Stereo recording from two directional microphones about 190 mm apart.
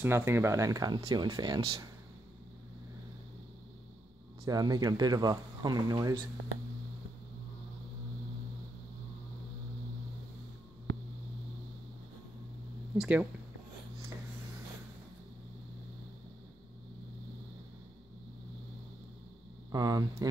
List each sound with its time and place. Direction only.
0.0 s speech: 15° right (ahead or behind)
4.5 s speech: 20° right (ahead or behind)
12.9 s speech: 5° right (ahead or behind)
19.7 s speech: 20° right (ahead or behind)